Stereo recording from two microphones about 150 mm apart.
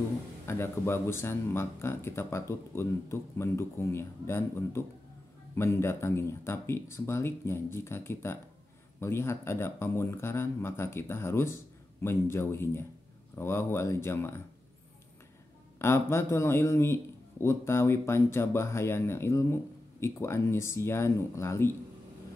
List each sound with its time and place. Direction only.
0.5 s a man's voice: 15° left (ahead or behind)
15.8 s a man's voice: 15° left (ahead or behind)